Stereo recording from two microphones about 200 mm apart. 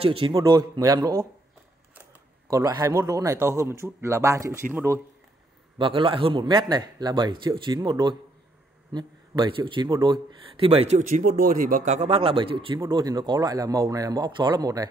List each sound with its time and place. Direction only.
0.0 s speech: 25° right (ahead or behind)
2.5 s speech: 15° right (ahead or behind)
5.8 s speech: 25° right (ahead or behind)